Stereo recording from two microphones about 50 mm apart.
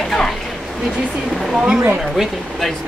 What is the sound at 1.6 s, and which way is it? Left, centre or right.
Speech, right.